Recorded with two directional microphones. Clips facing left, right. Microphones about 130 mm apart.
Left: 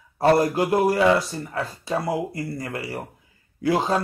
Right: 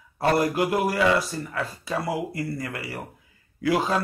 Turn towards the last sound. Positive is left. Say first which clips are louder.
# left 2 dB
turn(degrees=30)  # may be behind; listen again after turning